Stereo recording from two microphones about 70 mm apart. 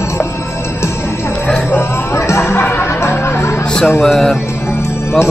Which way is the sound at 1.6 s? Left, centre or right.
Left.